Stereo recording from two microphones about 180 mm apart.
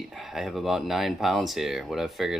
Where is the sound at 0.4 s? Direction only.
Centre (ahead or behind).